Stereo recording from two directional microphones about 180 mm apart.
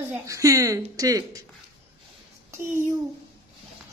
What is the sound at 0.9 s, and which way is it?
Speech, 20° right (ahead or behind).